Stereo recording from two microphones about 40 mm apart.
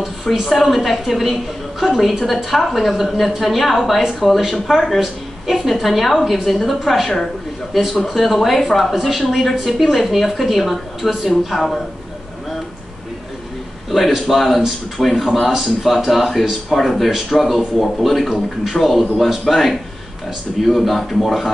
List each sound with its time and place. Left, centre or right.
0.0 s a woman's voice: centre
13.8 s a woman's voice: centre